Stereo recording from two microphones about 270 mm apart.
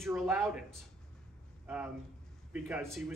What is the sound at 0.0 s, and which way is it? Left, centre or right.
Speech, centre.